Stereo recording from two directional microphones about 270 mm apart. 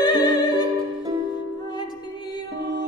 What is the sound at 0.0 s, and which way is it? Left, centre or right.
Music, centre.